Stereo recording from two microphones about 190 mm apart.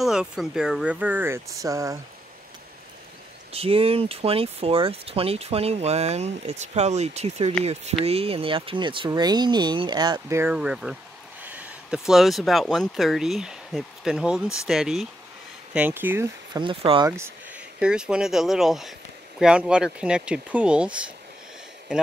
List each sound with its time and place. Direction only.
0.0 s speech: centre (ahead or behind)
3.5 s speech: 30° right (ahead or behind); by 11.0 s 5° right (ahead or behind)
11.4 s a sound: 5° right (ahead or behind)
12.1 s speech: centre (ahead or behind)
16.5 s speech: 25° right (ahead or behind)
17.1 s speech: 10° right (ahead or behind)